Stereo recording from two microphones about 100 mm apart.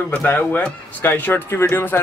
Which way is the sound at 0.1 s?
15° left (ahead or behind).